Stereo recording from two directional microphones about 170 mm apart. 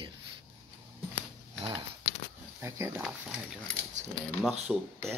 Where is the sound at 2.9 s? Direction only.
5° right (ahead or behind).